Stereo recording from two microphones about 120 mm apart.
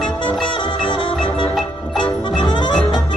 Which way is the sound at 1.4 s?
5° left (ahead or behind).